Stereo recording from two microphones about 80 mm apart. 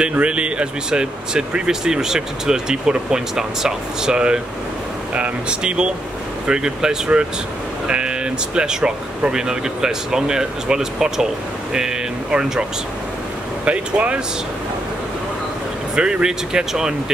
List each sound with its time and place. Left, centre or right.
0.0 s speech: centre
13.7 s speech: centre
16.0 s speech: centre